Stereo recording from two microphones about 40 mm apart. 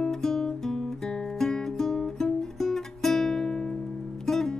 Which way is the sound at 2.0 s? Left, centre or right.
Centre.